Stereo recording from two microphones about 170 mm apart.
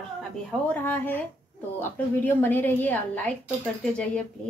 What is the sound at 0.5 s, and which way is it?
A woman's voice, 10° left (ahead or behind).